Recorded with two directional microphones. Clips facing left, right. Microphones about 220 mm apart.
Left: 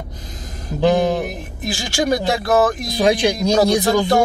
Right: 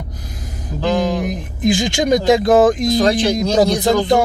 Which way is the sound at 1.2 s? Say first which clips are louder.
Right 8 dB; 20° right (ahead or behind).